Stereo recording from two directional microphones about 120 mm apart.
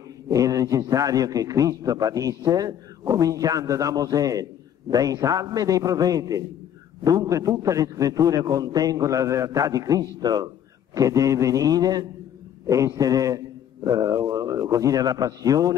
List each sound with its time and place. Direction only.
0.3 s a man's voice: 30° right (ahead or behind)